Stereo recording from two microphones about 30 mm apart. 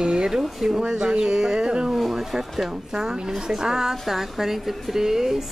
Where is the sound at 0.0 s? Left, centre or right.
Right.